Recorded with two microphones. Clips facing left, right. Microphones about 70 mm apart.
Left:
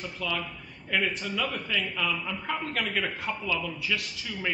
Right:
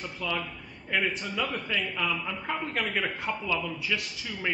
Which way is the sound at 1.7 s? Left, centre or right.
Centre.